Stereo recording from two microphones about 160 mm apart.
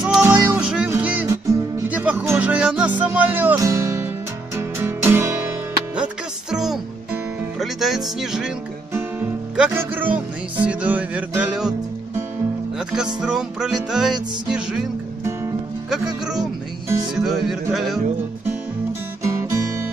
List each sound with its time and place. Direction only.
0.0 s music: 5° right (ahead or behind)
6.5 s music: centre (ahead or behind)
8.9 s music: 15° right (ahead or behind)
12.7 s music: 5° right (ahead or behind)
17.1 s music: centre (ahead or behind)
19.2 s music: 20° right (ahead or behind)